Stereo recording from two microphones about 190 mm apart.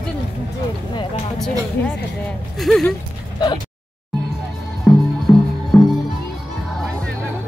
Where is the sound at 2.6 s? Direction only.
Centre (ahead or behind).